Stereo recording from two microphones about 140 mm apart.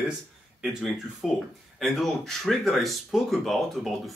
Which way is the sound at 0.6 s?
Centre (ahead or behind).